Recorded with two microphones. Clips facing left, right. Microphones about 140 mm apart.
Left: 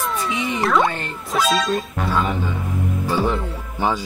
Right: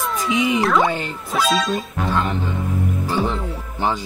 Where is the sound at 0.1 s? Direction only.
Centre (ahead or behind).